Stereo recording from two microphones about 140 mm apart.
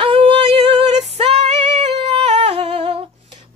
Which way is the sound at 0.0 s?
40° right (ahead or behind).